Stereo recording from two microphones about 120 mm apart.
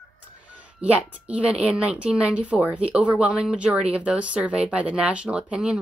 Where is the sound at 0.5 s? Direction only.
10° right (ahead or behind).